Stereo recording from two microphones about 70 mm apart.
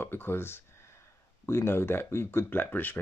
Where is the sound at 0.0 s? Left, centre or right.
Left.